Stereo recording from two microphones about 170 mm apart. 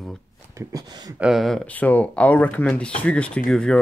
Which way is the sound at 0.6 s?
20° right (ahead or behind).